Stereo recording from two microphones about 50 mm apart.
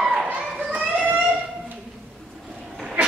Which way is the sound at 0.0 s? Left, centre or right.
Centre.